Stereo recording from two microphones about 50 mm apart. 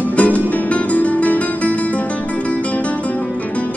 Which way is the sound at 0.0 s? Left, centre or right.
Left.